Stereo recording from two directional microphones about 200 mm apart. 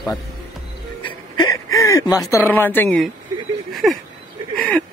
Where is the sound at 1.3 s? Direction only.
20° left (ahead or behind).